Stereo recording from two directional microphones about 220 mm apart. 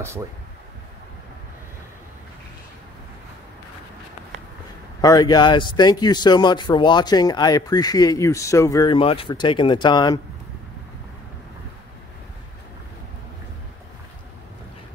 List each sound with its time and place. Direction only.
5.0 s speech: 15° left (ahead or behind)